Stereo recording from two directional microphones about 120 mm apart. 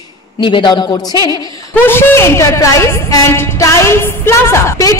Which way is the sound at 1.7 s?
20° left (ahead or behind).